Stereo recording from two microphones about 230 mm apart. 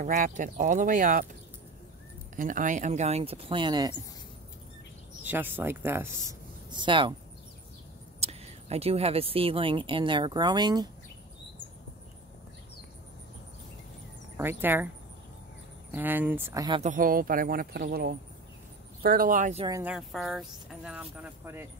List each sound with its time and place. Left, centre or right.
0.0 s speech: right
2.3 s speech: right; by 3.9 s centre
5.2 s speech: centre
6.7 s speech: right
8.2 s speech: right
14.3 s speech: centre
15.9 s speech: centre
16.8 s speech: right
19.8 s speech: centre